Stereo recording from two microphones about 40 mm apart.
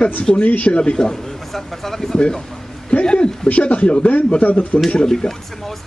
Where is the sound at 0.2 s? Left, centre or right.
Left.